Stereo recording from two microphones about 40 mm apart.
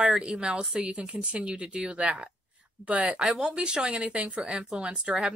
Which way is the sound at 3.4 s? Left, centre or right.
Right.